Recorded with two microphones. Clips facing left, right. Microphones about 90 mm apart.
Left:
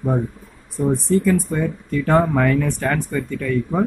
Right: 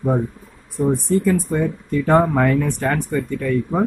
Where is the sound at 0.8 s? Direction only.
15° right (ahead or behind).